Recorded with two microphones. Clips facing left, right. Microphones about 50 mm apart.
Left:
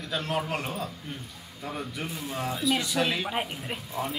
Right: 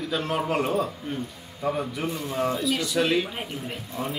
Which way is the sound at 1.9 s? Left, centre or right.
Centre.